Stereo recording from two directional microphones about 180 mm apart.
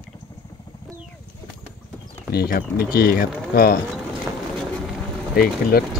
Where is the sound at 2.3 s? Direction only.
55° left (ahead or behind).